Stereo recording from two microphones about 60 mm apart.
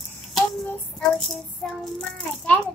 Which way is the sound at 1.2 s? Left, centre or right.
Centre.